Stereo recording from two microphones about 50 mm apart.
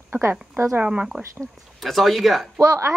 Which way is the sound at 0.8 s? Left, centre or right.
Right.